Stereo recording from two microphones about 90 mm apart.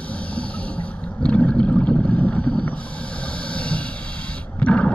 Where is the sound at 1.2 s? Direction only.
15° left (ahead or behind).